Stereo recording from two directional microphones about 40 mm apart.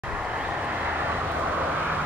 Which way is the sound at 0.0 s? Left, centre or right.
Centre.